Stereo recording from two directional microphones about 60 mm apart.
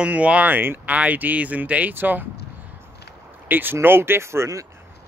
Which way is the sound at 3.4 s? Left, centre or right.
Right.